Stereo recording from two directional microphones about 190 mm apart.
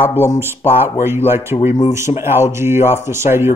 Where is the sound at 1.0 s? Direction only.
10° right (ahead or behind).